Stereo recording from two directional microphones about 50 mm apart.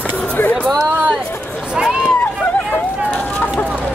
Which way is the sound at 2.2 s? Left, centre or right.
Left.